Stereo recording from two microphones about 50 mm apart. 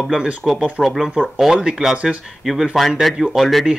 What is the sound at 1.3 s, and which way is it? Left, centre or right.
Speech, centre.